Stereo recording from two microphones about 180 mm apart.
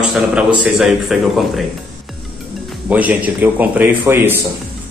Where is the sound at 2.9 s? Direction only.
10° right (ahead or behind).